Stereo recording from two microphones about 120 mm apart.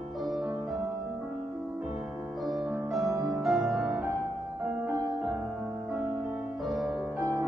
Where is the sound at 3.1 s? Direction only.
30° right (ahead or behind).